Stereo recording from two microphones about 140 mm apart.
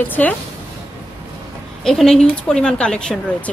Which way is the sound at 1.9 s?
5° left (ahead or behind).